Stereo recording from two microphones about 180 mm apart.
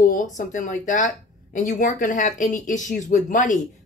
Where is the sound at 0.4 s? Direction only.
45° left (ahead or behind).